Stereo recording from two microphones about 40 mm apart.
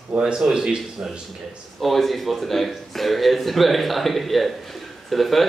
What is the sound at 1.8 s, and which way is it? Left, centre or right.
A man's voice, centre.